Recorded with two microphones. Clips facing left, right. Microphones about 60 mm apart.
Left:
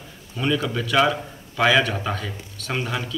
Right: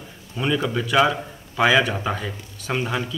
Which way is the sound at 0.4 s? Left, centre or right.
Centre.